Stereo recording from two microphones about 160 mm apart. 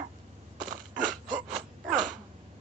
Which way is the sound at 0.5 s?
55° right (ahead or behind).